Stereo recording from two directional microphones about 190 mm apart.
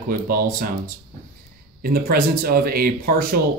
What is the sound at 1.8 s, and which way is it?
Speech, 50° right (ahead or behind).